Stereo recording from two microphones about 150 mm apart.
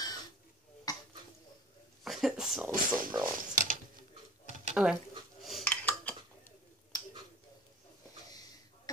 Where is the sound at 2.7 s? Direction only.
65° right (ahead or behind).